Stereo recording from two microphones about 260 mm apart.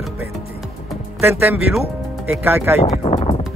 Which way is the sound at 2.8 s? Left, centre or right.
Left.